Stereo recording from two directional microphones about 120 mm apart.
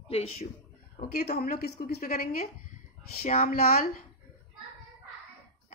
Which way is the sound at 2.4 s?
90° left.